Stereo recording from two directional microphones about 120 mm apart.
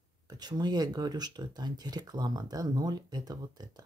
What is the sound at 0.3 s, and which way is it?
Speech, 35° right (ahead or behind).